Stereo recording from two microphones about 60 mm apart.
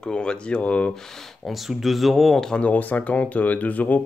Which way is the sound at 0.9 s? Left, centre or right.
Centre.